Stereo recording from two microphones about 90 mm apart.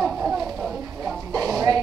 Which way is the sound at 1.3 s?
40° right (ahead or behind).